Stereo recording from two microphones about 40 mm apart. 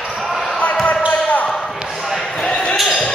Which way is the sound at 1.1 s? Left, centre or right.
Left.